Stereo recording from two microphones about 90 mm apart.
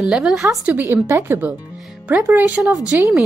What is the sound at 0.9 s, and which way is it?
Speech, 30° right (ahead or behind).